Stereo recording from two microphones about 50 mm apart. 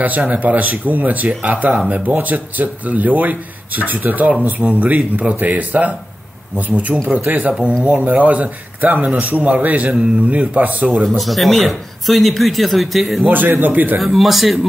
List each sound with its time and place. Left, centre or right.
0.0 s speech: right
6.9 s speech: centre
7.2 s speech: right
11.1 s speech: centre
13.2 s speech: right
13.9 s speech: centre